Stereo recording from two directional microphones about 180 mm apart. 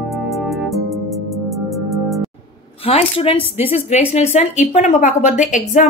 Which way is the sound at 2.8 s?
30° left (ahead or behind).